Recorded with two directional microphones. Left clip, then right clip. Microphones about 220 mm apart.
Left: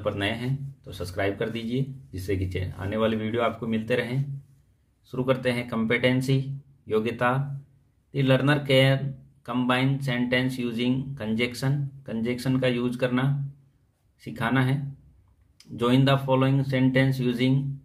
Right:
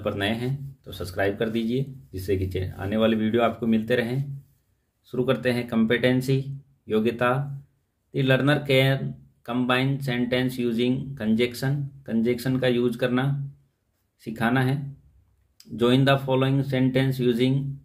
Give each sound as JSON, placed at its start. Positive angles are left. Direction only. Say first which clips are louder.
{"t": 0.0, "sound": "speech", "louder": "right 1 dB", "side_deg": -15}